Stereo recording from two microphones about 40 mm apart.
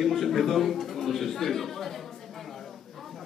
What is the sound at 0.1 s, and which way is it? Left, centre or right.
A man's voice, centre.